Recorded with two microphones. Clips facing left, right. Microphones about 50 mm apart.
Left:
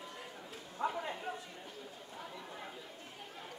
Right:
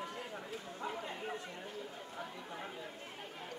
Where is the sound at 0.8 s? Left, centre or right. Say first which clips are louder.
Left 5 dB; centre.